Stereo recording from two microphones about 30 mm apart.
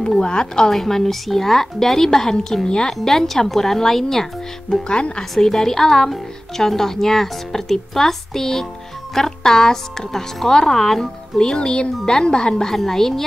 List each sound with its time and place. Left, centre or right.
0.2 s speech: left
0.7 s a woman's voice: centre
2.9 s a woman's voice: centre
4.8 s speech: left
5.4 s a woman's voice: centre
12.6 s a woman's voice: centre